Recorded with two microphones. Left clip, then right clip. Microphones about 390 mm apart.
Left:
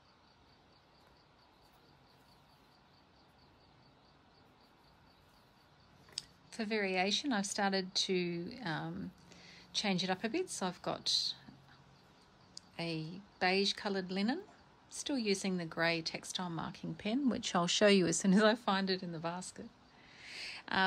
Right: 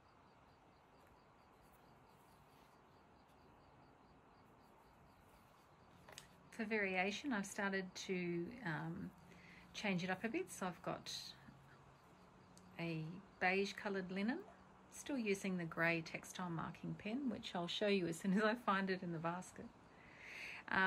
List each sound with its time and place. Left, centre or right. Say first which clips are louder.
6.5 s speech: left 5 dB; centre
12.7 s speech: left 6 dB; centre
20.2 s a sound: left 5 dB; centre